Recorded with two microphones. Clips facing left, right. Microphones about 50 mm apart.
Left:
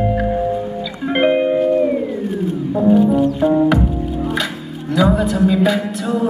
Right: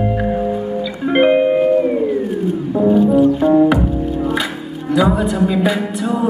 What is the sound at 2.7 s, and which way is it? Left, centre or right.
Music, centre.